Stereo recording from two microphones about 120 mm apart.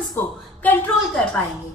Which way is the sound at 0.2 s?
15° left (ahead or behind).